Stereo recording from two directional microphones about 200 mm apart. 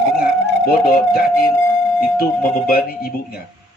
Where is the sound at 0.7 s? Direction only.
50° left (ahead or behind).